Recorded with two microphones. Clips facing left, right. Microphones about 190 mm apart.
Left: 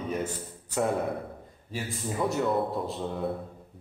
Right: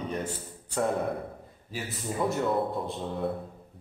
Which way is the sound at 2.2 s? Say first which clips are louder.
Even; centre (ahead or behind).